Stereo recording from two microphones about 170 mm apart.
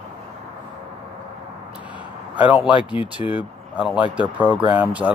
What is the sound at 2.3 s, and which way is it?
Speech, 10° right (ahead or behind).